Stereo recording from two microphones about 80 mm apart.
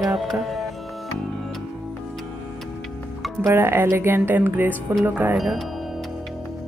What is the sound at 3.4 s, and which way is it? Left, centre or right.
Speech, right.